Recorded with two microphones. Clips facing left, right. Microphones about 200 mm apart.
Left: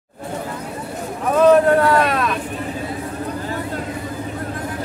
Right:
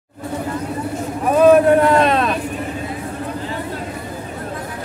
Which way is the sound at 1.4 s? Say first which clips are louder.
Right 2 dB; 15° right (ahead or behind).